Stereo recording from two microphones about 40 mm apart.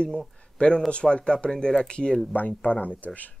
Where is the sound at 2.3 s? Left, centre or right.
Left.